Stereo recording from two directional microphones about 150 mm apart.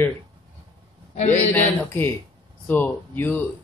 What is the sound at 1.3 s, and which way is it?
Speech, 15° left (ahead or behind).